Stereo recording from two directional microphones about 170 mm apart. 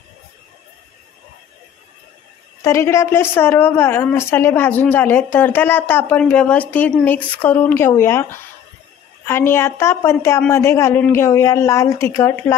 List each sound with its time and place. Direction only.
2.6 s a woman's voice: 15° left (ahead or behind)